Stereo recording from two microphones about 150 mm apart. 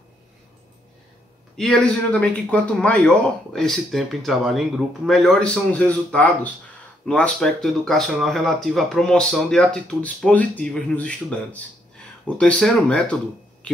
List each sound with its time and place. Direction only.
1.6 s speech: 5° left (ahead or behind)